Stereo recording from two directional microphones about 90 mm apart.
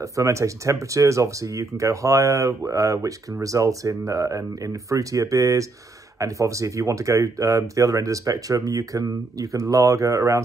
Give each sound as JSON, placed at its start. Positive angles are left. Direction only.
{"t": 0.0, "sound": "speech", "side_deg": -35}